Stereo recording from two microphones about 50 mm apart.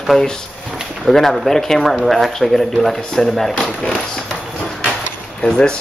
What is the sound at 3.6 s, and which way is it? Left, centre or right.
Speech, centre.